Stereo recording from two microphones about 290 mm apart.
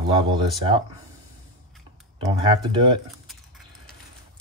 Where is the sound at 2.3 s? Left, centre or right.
Centre.